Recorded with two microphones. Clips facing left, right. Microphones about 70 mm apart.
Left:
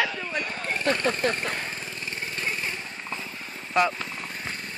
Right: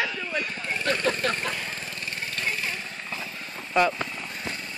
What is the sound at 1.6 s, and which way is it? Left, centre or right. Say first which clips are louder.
Lawn mower: even; centre.